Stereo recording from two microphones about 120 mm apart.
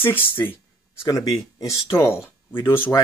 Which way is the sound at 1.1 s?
35° left (ahead or behind).